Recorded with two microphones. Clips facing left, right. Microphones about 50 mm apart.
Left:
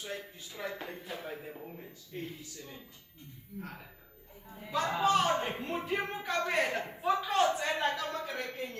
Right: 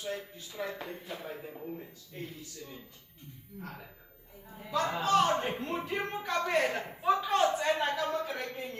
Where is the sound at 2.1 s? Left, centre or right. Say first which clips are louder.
Left 2 dB; centre.